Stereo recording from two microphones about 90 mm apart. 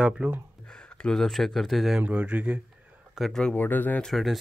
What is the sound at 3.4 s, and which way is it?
Speech, 10° left (ahead or behind).